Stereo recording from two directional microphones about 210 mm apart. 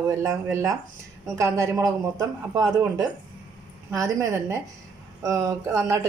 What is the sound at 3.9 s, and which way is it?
Speech, 15° right (ahead or behind).